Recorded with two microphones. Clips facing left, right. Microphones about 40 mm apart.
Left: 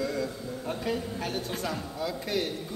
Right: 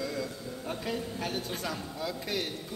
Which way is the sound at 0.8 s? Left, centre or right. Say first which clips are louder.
Left 2 dB; centre.